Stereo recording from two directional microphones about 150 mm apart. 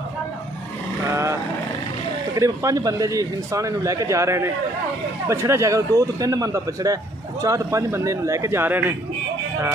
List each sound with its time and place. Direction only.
1.1 s vehicle: 20° right (ahead or behind)
2.3 s a man's voice: 20° right (ahead or behind)